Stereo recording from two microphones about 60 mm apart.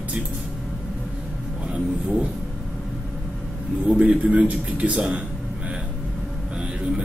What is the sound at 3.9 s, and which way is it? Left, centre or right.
A man's voice, centre.